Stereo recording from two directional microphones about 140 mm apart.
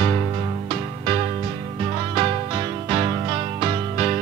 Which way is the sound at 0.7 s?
35° right (ahead or behind).